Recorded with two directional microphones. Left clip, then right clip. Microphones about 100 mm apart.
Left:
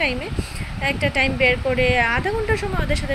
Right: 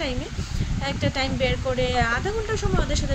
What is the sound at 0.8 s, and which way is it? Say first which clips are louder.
Speech: left 6 dB; 40° right (ahead or behind).